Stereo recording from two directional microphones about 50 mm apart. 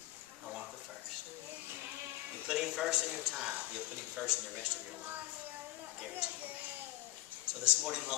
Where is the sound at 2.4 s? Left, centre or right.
Centre.